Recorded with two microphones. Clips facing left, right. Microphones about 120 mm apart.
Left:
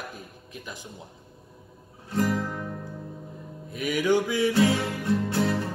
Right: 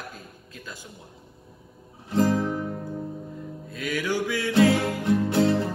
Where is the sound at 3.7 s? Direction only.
20° left (ahead or behind).